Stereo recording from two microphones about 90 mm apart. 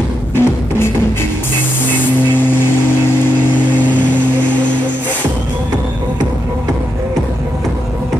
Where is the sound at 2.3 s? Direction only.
25° left (ahead or behind).